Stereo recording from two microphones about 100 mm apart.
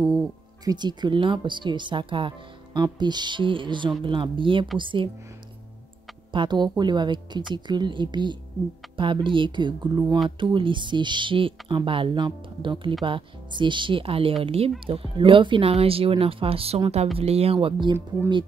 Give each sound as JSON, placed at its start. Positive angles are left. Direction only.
{"t": 0.7, "sound": "speech", "side_deg": -45}
{"t": 6.3, "sound": "speech", "side_deg": -50}
{"t": 14.4, "sound": "speech", "side_deg": -80}
{"t": 14.9, "sound": "speech", "side_deg": -65}
{"t": 15.7, "sound": "speech", "side_deg": -75}